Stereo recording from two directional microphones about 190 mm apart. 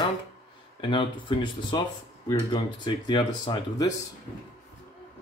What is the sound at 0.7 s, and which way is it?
Speech, 25° left (ahead or behind).